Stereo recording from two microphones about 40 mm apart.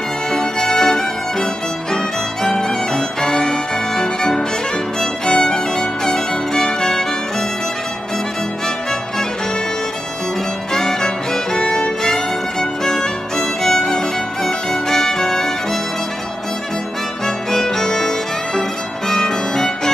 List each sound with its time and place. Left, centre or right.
0.3 s music: centre
2.4 s violin: centre
10.7 s music: centre
11.5 s violin: centre
17.5 s music: centre
19.0 s violin: centre